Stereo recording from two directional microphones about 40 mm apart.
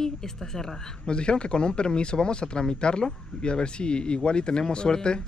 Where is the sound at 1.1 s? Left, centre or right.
Left.